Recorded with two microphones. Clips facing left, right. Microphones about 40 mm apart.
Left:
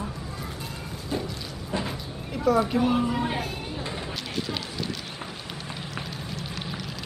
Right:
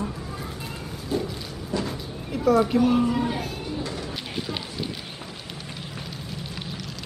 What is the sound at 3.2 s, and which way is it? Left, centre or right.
Music, left.